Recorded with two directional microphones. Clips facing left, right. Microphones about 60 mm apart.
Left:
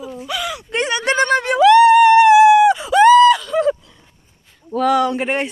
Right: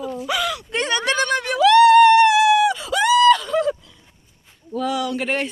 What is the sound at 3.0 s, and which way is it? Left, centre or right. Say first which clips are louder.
Groan: left 8 dB; left.